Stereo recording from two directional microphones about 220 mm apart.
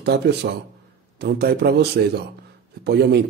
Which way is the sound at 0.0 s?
50° right (ahead or behind).